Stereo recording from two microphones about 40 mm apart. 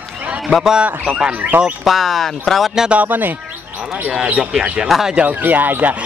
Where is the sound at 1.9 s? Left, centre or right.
Centre.